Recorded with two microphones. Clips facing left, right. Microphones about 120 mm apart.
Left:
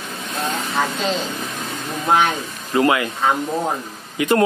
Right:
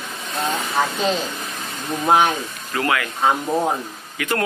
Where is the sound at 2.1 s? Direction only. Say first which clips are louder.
Right 1 dB; 15° right (ahead or behind).